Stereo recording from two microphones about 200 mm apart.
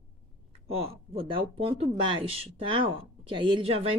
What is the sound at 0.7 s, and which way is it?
Speech, 30° right (ahead or behind).